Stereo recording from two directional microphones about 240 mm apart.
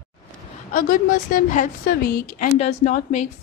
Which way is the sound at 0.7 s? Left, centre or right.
Left.